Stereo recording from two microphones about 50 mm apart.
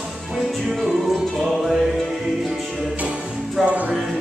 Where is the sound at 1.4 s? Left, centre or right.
Centre.